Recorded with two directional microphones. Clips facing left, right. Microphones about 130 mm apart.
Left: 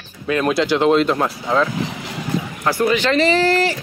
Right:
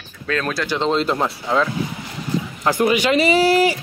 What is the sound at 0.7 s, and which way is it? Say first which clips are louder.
Speech: left 4 dB; 10° left (ahead or behind).